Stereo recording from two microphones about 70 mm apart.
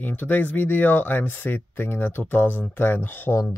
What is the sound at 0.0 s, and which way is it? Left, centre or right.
Speech, left.